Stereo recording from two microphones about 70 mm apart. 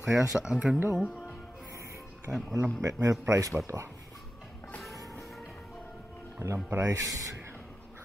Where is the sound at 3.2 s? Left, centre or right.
Right.